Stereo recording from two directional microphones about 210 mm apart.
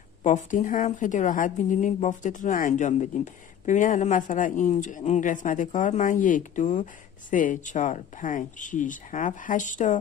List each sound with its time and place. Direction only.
0.2 s speech: 35° left (ahead or behind)